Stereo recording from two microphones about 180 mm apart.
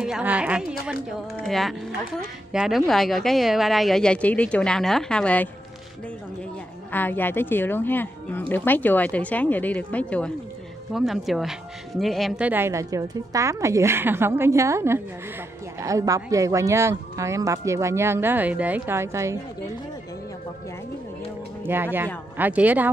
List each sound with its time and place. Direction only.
0.0 s speech: 5° right (ahead or behind)
6.9 s a woman's voice: 10° left (ahead or behind); by 19.3 s 15° right (ahead or behind)
21.6 s speech: 10° right (ahead or behind)